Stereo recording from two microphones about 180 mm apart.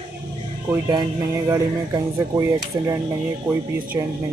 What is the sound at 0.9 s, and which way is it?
Speech, 20° right (ahead or behind).